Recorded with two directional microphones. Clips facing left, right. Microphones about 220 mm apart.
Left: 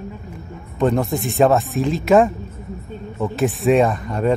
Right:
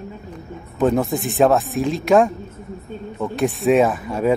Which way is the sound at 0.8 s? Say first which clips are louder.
Even; centre (ahead or behind).